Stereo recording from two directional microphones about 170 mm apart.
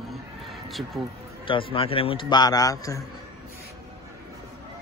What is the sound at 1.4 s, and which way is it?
A man's voice, 30° left (ahead or behind).